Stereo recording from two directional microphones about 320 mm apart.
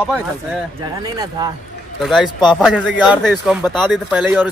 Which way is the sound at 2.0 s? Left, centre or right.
Centre.